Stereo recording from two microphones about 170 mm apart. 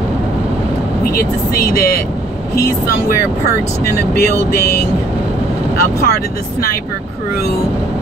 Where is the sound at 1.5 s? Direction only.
60° left (ahead or behind).